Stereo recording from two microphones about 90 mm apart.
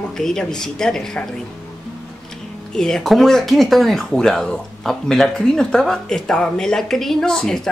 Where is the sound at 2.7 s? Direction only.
5° left (ahead or behind).